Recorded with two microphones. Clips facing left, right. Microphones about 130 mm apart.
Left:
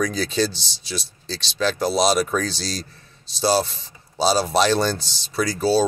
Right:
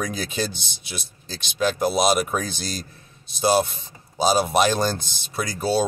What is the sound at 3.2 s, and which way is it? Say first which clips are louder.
Speech: even; 55° right (ahead or behind).